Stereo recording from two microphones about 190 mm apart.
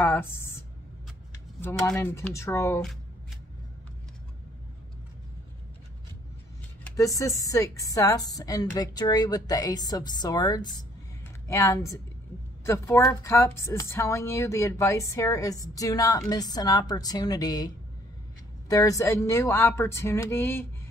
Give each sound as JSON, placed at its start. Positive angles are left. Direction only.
{"t": 0.0, "sound": "speech", "side_deg": 10}
{"t": 6.8, "sound": "a woman's voice", "side_deg": 15}